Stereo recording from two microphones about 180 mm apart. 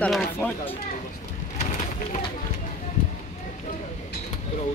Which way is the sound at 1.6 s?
40° left (ahead or behind).